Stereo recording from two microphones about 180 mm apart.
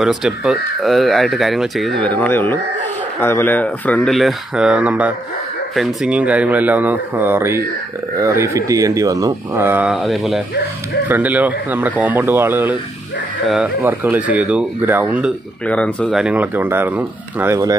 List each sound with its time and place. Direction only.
0.0 s speech: 5° right (ahead or behind)
15.6 s speech: 5° left (ahead or behind)
16.1 s speech: 5° right (ahead or behind)